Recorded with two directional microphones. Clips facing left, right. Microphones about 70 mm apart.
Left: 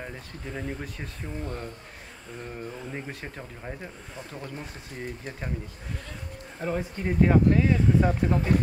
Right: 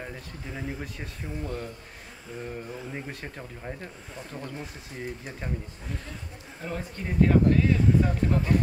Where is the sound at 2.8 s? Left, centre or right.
Centre.